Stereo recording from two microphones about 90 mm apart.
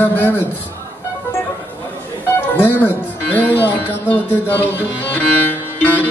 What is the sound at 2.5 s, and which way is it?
Speech, 20° left (ahead or behind).